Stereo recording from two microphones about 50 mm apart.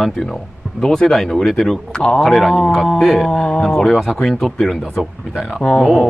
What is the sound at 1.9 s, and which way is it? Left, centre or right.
Speech, centre.